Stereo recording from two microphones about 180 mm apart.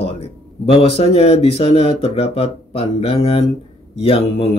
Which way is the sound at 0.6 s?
35° left (ahead or behind).